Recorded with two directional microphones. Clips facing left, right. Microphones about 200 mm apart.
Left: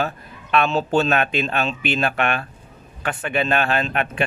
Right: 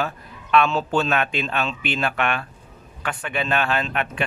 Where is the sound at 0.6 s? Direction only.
25° left (ahead or behind).